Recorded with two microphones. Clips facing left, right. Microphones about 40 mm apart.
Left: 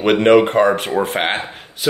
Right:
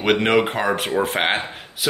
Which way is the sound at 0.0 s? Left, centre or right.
Centre.